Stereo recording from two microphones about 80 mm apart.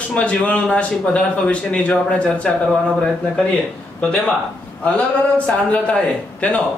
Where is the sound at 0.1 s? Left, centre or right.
Centre.